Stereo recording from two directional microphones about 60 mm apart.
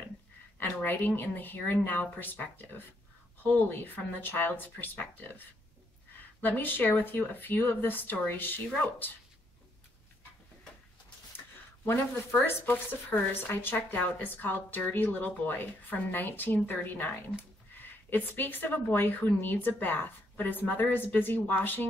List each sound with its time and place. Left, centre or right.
0.8 s a woman's voice: left
11.3 s a woman's voice: left